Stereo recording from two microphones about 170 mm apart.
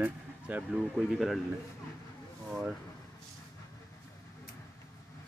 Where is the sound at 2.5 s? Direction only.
5° right (ahead or behind).